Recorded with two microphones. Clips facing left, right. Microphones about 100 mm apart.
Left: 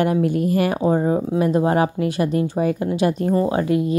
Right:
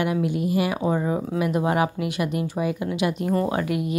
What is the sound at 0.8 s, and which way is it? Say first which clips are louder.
A woman's voice: left 5 dB; 35° left (ahead or behind).